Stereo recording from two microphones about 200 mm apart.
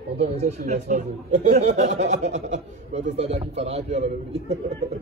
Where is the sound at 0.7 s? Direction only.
35° right (ahead or behind).